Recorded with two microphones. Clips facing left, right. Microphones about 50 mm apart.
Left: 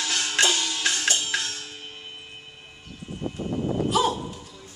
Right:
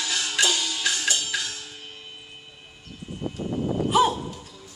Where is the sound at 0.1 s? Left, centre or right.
Left.